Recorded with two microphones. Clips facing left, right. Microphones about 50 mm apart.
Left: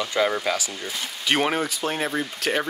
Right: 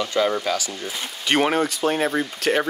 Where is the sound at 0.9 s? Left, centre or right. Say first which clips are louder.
Right 1 dB; centre.